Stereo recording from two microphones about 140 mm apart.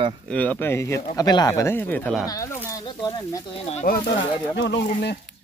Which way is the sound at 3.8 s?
80° left.